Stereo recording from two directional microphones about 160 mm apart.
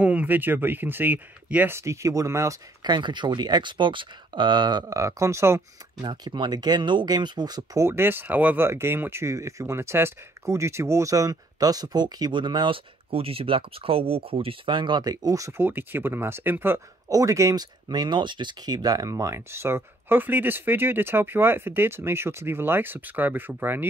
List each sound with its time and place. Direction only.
0.0 s speech: 10° right (ahead or behind)